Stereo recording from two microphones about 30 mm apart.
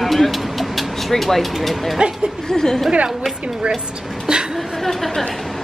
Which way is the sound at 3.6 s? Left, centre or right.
Right.